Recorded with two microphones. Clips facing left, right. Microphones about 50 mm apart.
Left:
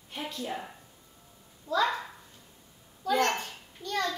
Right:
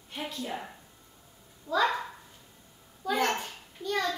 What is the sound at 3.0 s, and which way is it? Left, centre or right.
A child's voice, centre.